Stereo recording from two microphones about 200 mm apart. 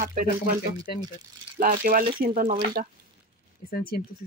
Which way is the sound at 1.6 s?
45° right (ahead or behind).